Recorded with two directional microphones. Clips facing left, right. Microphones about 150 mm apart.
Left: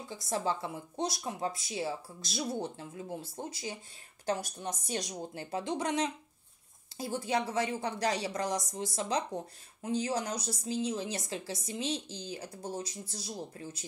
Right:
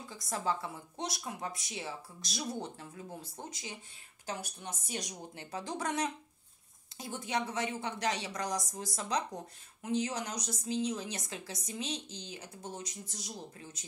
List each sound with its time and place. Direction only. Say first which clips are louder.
0.2 s a woman's voice: left 2 dB; 30° left (ahead or behind)
5.4 s speech: left 4 dB; 25° left (ahead or behind)
7.0 s a woman's voice: left 4 dB; 35° left (ahead or behind)